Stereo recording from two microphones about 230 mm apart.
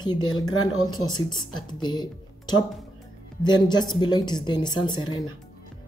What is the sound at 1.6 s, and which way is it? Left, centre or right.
A woman's voice, centre.